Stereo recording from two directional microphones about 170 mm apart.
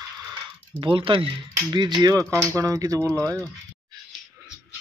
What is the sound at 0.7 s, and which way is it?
Speech, 30° right (ahead or behind).